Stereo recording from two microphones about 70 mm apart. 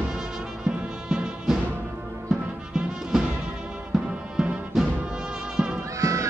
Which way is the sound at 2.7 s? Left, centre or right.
Centre.